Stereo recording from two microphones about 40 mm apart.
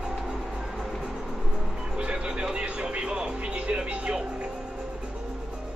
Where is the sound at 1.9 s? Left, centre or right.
Right.